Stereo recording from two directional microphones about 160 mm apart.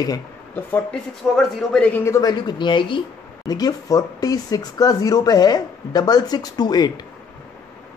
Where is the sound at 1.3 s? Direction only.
Centre (ahead or behind); by 6.9 s 25° left (ahead or behind).